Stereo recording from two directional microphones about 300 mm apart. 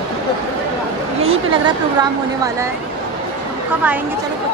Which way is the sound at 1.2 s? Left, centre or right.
Centre.